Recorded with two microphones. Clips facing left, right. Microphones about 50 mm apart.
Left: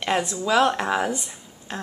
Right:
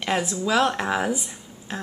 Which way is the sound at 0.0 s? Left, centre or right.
Centre.